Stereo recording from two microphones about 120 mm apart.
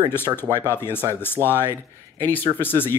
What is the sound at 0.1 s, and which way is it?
Speech, 20° left (ahead or behind).